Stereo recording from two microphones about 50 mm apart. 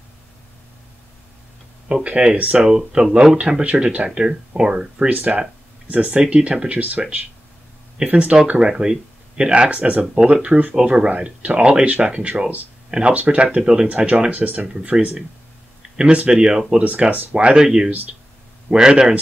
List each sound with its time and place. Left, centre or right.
2.0 s speech: right
2.5 s speech: centre
5.1 s speech: right
13.6 s speech: centre
13.8 s speech: right
16.8 s speech: right